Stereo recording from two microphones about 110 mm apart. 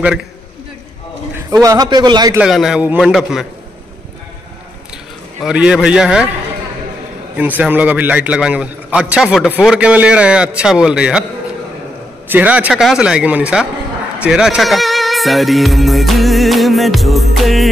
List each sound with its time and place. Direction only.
1.5 s a man's voice: 35° right (ahead or behind)
2.4 s speech: 5° right (ahead or behind)
5.4 s a man's voice: 10° right (ahead or behind)
7.3 s a man's voice: 15° right (ahead or behind)
12.3 s a man's voice: 15° right (ahead or behind)